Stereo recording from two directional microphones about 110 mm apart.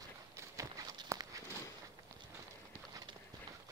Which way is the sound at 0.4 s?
30° right (ahead or behind).